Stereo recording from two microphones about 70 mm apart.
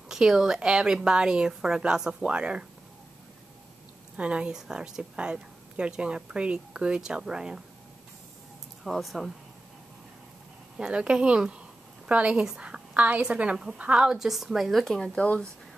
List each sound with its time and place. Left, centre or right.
0.1 s a woman's voice: centre
4.2 s a woman's voice: centre
8.8 s a woman's voice: centre
10.8 s a woman's voice: centre
15.1 s speech: centre